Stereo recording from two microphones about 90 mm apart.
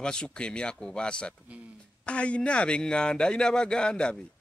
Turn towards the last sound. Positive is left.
turn(degrees=10)  # may be behind; listen again after turning